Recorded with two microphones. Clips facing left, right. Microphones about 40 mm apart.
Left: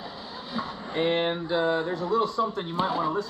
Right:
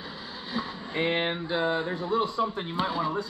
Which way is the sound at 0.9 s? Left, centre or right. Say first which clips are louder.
Left 2 dB; right.